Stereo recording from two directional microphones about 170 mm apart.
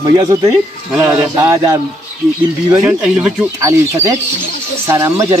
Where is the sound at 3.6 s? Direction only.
15° right (ahead or behind).